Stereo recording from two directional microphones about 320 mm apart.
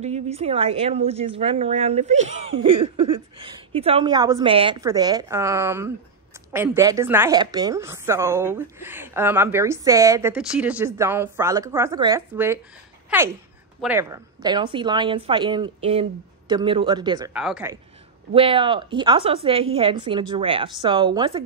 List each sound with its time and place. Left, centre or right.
0.0 s a woman's voice: centre
13.7 s a woman's voice: centre
18.3 s a woman's voice: centre